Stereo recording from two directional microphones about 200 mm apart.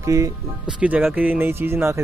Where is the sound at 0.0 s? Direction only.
15° right (ahead or behind).